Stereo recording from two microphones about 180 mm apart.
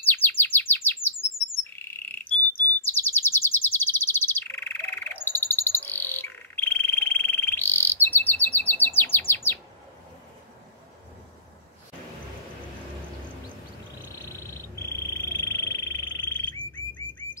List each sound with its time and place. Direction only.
0.0 s bird: 10° left (ahead or behind)
2.8 s chirp: 10° left (ahead or behind)
14.1 s frog: 15° left (ahead or behind)